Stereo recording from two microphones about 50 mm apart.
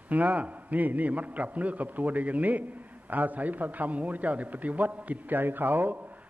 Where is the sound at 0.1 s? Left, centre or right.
Right.